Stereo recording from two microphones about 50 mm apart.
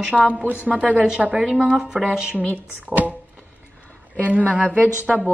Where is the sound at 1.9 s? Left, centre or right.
Centre.